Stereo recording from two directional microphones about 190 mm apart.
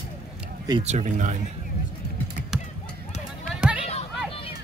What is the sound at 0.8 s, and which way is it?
Speech, 40° right (ahead or behind).